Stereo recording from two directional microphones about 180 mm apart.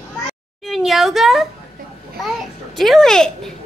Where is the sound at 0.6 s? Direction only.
Centre (ahead or behind).